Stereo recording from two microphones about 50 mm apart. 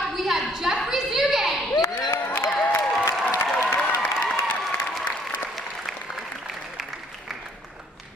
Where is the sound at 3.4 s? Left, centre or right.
Left.